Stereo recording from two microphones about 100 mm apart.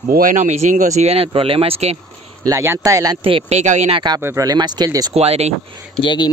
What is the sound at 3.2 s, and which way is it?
Speech, 70° right (ahead or behind).